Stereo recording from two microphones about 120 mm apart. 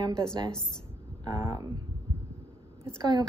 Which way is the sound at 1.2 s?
35° right (ahead or behind).